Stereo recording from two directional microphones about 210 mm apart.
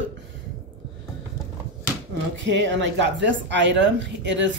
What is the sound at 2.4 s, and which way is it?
A woman's voice, 60° right (ahead or behind).